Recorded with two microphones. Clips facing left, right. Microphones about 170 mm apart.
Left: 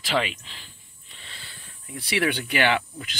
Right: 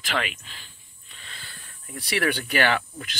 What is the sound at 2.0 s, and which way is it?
Speech, 45° right (ahead or behind).